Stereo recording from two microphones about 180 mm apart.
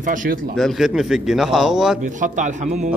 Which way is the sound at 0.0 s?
45° right (ahead or behind).